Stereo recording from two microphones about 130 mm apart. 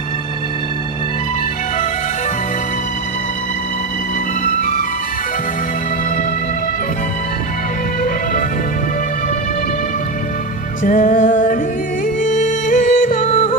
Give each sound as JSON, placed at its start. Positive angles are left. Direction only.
{"t": 4.6, "sound": "music", "side_deg": 90}
{"t": 10.8, "sound": "music", "side_deg": 90}
{"t": 13.3, "sound": "music", "side_deg": 45}